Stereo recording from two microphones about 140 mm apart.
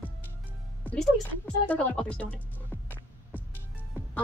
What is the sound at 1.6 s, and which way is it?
Speech, 10° left (ahead or behind).